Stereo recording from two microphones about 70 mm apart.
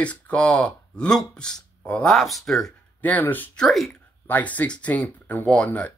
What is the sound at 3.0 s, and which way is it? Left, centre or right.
Speech, left.